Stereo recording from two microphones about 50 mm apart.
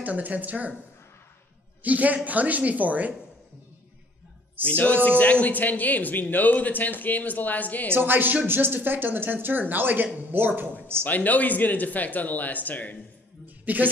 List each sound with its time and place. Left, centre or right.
0.0 s speech: right
1.8 s a woman's voice: right
4.6 s speech: left
7.9 s speech: right
11.1 s speech: left
13.7 s speech: right